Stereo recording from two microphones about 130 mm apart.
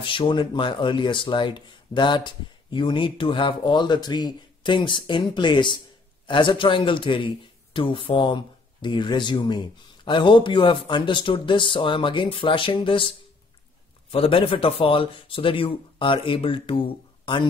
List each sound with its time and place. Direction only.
0.0 s a man's voice: 40° left (ahead or behind)
14.1 s speech: 45° left (ahead or behind)